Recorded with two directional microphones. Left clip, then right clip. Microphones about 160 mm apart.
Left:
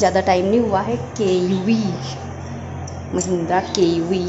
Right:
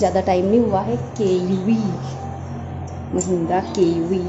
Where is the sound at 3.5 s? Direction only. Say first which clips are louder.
Left 2 dB; 15° right (ahead or behind).